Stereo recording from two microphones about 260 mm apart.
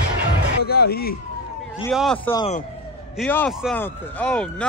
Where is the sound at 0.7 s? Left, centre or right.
Left.